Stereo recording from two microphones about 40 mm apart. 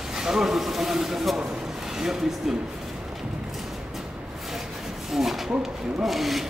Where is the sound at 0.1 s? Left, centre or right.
Centre.